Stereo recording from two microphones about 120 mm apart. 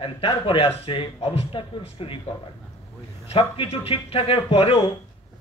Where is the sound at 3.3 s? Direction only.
55° left (ahead or behind).